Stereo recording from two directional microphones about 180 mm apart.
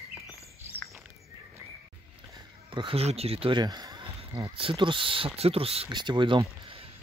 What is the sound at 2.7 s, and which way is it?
Speech, 30° right (ahead or behind).